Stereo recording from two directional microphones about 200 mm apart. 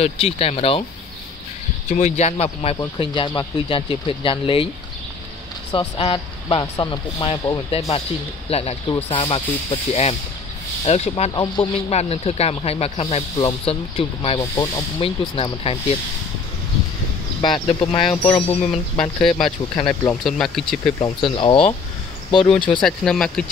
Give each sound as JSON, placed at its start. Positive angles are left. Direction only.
{"t": 0.0, "sound": "speech", "side_deg": 30}
{"t": 1.9, "sound": "speech", "side_deg": 35}
{"t": 5.7, "sound": "speech", "side_deg": 25}
{"t": 14.4, "sound": "speech", "side_deg": 15}
{"t": 17.4, "sound": "speech", "side_deg": 25}
{"t": 19.9, "sound": "speech", "side_deg": 5}
{"t": 21.0, "sound": "speech", "side_deg": 25}
{"t": 22.7, "sound": "speech", "side_deg": 5}